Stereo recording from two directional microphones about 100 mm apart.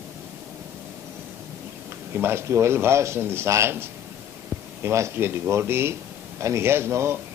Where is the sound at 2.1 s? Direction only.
25° right (ahead or behind).